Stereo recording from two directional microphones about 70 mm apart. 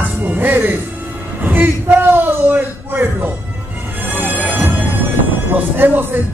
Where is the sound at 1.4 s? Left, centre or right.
Right.